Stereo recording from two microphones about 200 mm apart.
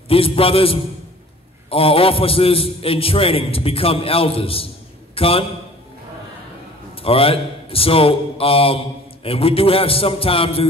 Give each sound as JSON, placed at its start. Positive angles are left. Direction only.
{"t": 0.1, "sound": "a man's voice", "side_deg": 30}
{"t": 7.0, "sound": "a man's voice", "side_deg": 30}